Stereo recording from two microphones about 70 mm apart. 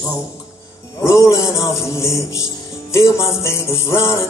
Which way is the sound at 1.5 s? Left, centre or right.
Left.